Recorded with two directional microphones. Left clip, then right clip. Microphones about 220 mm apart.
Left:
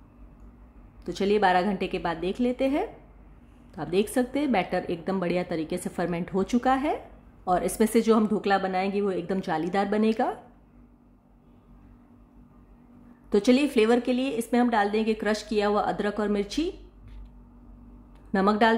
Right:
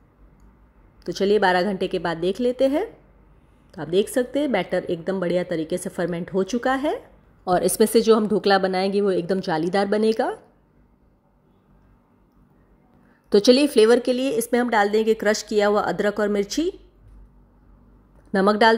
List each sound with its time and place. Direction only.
1.0 s a woman's voice: 15° right (ahead or behind)
13.3 s a woman's voice: 25° right (ahead or behind)
18.3 s a woman's voice: 20° right (ahead or behind)